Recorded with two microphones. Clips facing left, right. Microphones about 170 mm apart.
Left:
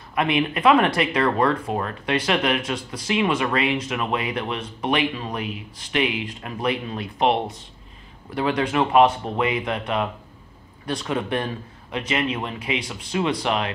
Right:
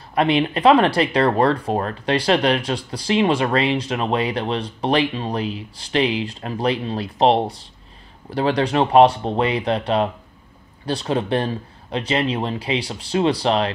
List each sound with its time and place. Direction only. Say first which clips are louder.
0.1 s speech: right 4 dB; 30° right (ahead or behind)